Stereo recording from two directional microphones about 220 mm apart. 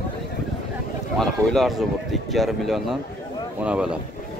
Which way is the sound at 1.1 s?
Centre (ahead or behind).